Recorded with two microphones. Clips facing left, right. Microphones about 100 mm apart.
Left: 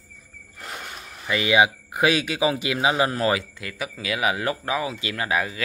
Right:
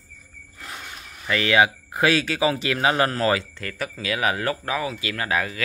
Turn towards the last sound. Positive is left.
turn(degrees=15)  # may be behind; listen again after turning